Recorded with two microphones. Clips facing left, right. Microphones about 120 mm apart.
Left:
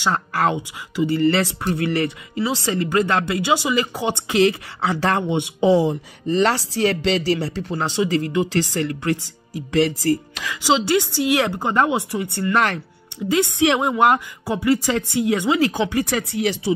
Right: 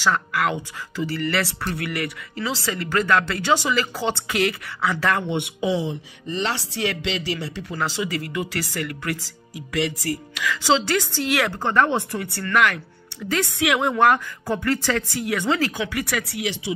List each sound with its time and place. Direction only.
0.1 s speech: 35° left (ahead or behind)
0.6 s speech: 20° left (ahead or behind)
5.7 s speech: 45° left (ahead or behind)
10.9 s a woman's voice: 15° left (ahead or behind)
12.5 s a woman's voice: 35° left (ahead or behind); by 15.7 s 15° left (ahead or behind)
15.7 s speech: 30° left (ahead or behind)